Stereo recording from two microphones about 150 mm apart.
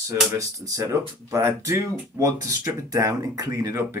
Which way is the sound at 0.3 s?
20° right (ahead or behind).